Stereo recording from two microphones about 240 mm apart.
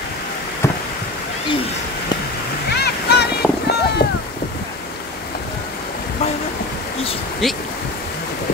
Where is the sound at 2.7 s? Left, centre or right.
Left.